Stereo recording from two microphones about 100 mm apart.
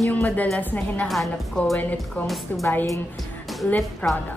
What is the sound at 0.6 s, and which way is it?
Speech, 20° left (ahead or behind).